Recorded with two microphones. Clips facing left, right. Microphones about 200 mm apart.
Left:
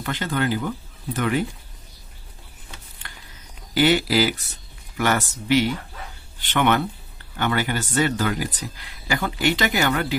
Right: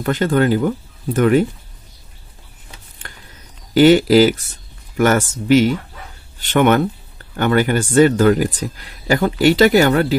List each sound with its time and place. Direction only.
0.0 s speech: 50° right (ahead or behind)
3.7 s speech: 45° right (ahead or behind)